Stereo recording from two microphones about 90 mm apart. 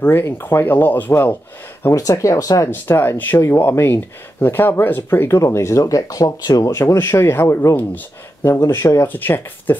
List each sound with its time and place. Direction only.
0.0 s speech: 25° left (ahead or behind)
1.9 s speech: 35° left (ahead or behind)
2.7 s speech: 25° left (ahead or behind)